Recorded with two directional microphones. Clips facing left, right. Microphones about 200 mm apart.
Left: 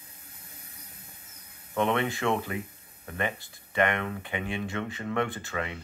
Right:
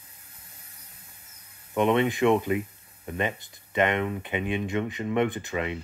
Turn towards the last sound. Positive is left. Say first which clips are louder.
# right 4 dB
turn(degrees=-20)  # may be behind; listen again after turning